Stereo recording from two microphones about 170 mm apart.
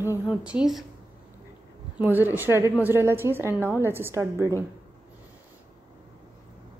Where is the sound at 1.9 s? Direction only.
10° right (ahead or behind).